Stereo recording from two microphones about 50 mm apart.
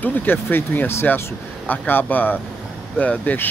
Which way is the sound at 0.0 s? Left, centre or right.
Left.